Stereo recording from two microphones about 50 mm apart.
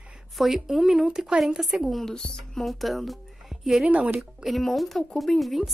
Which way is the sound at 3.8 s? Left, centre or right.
Right.